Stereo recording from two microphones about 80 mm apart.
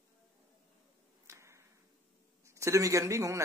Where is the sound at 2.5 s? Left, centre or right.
Right.